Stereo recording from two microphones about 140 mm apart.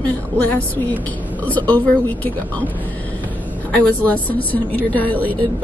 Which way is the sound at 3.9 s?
10° left (ahead or behind).